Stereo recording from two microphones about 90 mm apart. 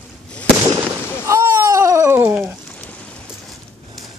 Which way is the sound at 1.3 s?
30° right (ahead or behind).